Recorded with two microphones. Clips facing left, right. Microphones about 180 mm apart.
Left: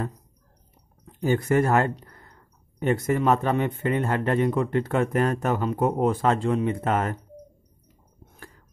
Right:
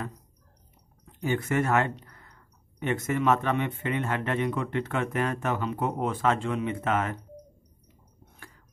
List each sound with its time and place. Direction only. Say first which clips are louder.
1.0 s speech: left 5 dB; 35° left (ahead or behind)